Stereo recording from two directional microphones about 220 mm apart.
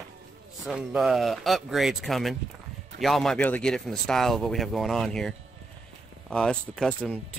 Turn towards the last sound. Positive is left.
turn(degrees=0)  # may be behind; listen again after turning